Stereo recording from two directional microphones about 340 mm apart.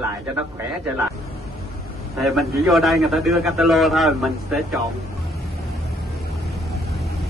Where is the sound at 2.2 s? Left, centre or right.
Centre.